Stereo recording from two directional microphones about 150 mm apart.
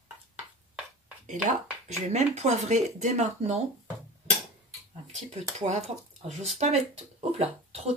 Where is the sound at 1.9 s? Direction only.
50° right (ahead or behind).